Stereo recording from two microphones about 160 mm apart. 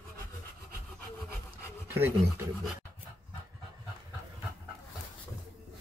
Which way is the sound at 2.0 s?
15° right (ahead or behind).